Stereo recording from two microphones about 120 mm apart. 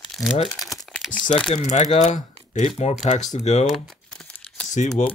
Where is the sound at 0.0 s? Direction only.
Centre (ahead or behind).